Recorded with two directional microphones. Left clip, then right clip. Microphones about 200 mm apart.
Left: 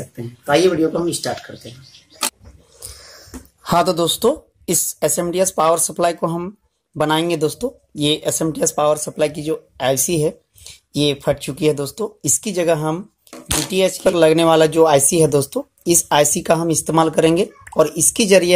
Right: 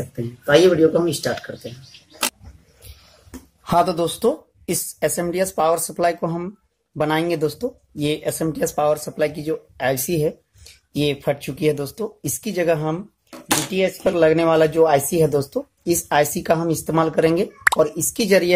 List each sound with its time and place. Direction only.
0.1 s speech: centre (ahead or behind)
3.6 s speech: 20° left (ahead or behind)